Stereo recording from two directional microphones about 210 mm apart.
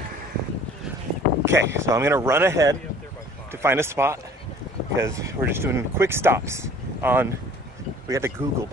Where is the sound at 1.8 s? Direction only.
15° right (ahead or behind).